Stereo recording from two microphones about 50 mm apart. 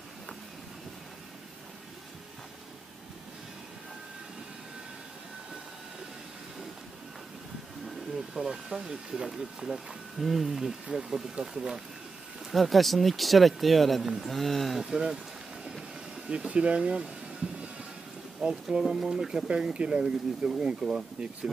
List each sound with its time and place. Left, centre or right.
8.4 s speech: centre
12.4 s speech: centre
14.8 s speech: centre
16.3 s speech: right